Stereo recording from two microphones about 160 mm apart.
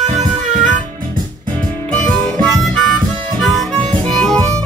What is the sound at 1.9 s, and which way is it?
Harmonica, 5° left (ahead or behind).